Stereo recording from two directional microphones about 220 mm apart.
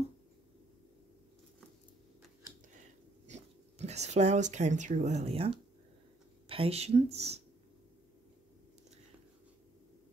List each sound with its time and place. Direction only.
3.3 s speech: 30° right (ahead or behind)